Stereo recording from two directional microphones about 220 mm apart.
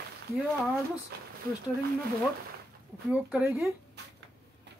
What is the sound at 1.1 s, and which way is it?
Speech, 45° right (ahead or behind).